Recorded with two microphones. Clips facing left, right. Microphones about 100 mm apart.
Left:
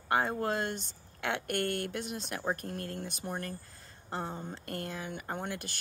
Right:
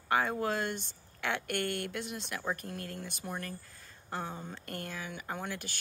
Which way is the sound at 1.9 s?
30° left (ahead or behind).